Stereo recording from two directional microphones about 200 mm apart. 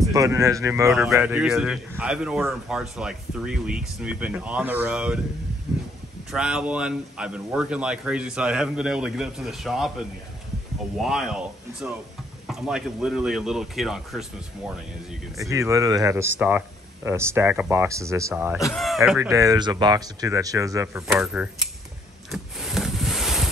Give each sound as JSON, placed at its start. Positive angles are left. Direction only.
{"t": 0.0, "sound": "speech", "side_deg": -15}
{"t": 0.8, "sound": "a man's voice", "side_deg": 0}
{"t": 6.3, "sound": "a man's voice", "side_deg": -5}
{"t": 15.3, "sound": "speech", "side_deg": -15}
{"t": 18.7, "sound": "a man's voice", "side_deg": 0}
{"t": 19.0, "sound": "speech", "side_deg": -15}
{"t": 21.1, "sound": "a man's voice", "side_deg": -5}
{"t": 22.3, "sound": "a sound", "side_deg": 0}